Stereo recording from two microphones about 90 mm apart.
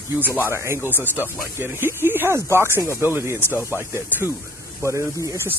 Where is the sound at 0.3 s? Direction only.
30° right (ahead or behind).